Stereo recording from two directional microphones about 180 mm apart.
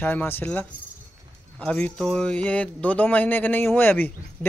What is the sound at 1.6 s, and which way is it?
Speech, 5° left (ahead or behind).